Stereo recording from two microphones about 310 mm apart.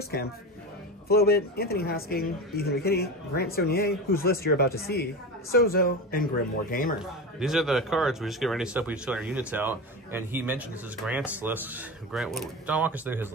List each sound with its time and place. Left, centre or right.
1.0 s speech: left
7.0 s speech: centre